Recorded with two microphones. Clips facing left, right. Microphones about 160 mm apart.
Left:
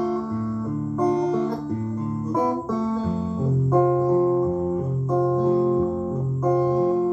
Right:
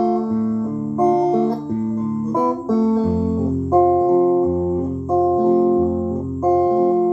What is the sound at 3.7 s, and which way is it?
Keyboard, 35° right (ahead or behind).